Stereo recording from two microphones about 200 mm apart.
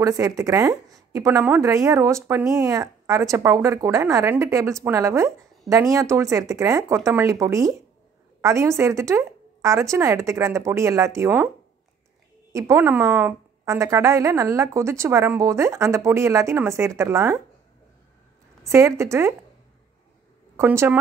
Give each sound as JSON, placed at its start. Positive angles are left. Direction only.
{"t": 0.0, "sound": "a woman's voice", "side_deg": -20}
{"t": 2.6, "sound": "a woman's voice", "side_deg": -15}
{"t": 12.5, "sound": "a woman's voice", "side_deg": -15}
{"t": 18.6, "sound": "a woman's voice", "side_deg": -15}
{"t": 20.5, "sound": "a woman's voice", "side_deg": -10}